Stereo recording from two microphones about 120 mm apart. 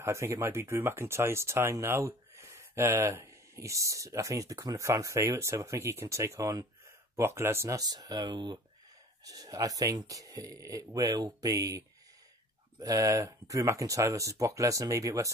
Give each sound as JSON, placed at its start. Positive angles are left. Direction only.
{"t": 0.0, "sound": "speech", "side_deg": -25}